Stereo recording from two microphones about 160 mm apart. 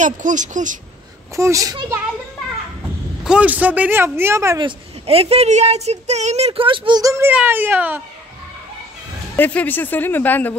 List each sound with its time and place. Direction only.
0.0 s speech: 50° right (ahead or behind)
1.3 s a child's voice: 20° right (ahead or behind)
3.3 s speech: 10° right (ahead or behind)
4.6 s speech: 35° right (ahead or behind); by 8.0 s 10° right (ahead or behind)
9.4 s speech: 10° left (ahead or behind)